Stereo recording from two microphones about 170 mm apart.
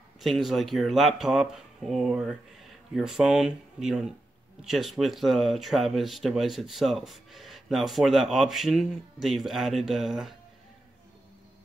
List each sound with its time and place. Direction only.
0.2 s speech: centre (ahead or behind)